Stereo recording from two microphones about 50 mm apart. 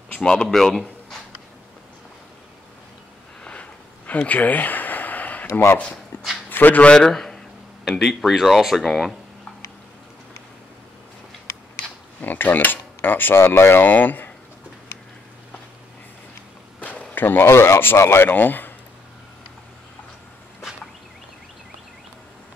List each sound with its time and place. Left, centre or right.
0.2 s speech: centre
4.1 s a sound: left
5.5 s speech: left
6.5 s speech: left
7.1 s a man's voice: centre
12.2 s cutlery: left
17.1 s speech: left
17.5 s speech: left
18.3 s speech: left